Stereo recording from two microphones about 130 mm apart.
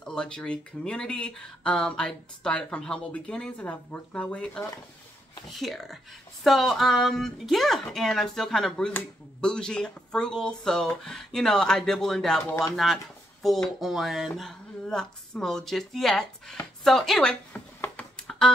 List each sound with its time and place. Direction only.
0.0 s speech: 5° left (ahead or behind)
12.4 s speech: 25° left (ahead or behind)
12.7 s speech: centre (ahead or behind)
17.7 s a sound: 15° left (ahead or behind)